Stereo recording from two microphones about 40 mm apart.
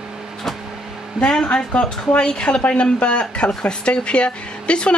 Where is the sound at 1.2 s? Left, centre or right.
Left.